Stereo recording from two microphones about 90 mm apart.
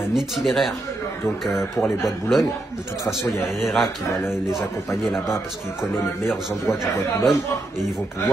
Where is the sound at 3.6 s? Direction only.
Centre (ahead or behind).